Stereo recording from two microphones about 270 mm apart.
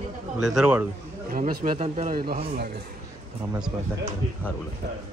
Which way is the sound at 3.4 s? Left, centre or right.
Centre.